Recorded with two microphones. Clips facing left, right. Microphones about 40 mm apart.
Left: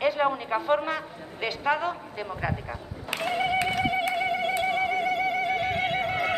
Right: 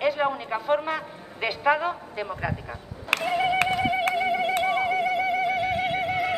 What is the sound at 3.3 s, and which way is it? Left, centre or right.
Music, centre.